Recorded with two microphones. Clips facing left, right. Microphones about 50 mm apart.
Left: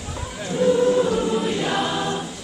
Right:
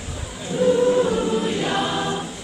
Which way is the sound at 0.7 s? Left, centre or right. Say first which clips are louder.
Even; centre.